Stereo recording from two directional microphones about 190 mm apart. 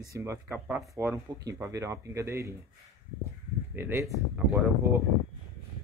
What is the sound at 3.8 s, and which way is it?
Speech, 10° right (ahead or behind).